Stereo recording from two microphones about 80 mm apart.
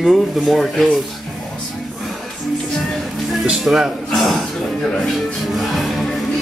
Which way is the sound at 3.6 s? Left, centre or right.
Centre.